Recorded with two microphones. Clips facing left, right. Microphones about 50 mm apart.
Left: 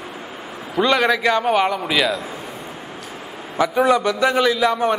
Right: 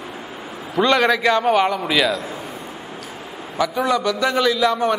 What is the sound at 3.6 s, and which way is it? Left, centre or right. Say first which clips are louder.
A man's voice: left 3 dB; left.